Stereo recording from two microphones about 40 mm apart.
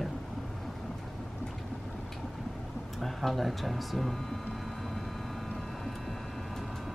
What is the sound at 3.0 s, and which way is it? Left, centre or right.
Speech, centre.